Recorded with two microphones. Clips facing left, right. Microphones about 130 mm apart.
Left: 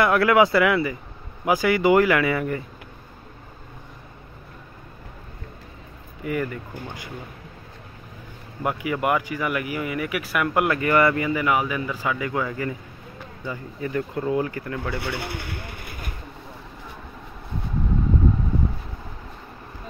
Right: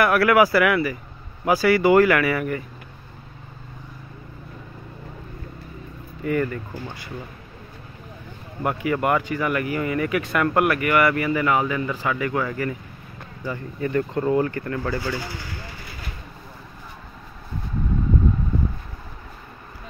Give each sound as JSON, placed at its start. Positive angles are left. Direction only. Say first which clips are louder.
{"t": 0.0, "sound": "speech", "louder": "right 1 dB", "side_deg": 20}
{"t": 6.2, "sound": "speech", "louder": "right 3 dB", "side_deg": 15}
{"t": 8.6, "sound": "speech", "louder": "right 2 dB", "side_deg": 15}
{"t": 10.6, "sound": "speech", "louder": "left 1 dB", "side_deg": 25}
{"t": 13.7, "sound": "speech", "louder": "right 4 dB", "side_deg": 5}
{"t": 15.0, "sound": "a sound", "louder": "right 1 dB", "side_deg": 65}